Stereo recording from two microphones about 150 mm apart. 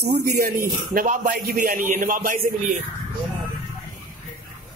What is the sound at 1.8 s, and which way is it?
Speech, 60° right (ahead or behind).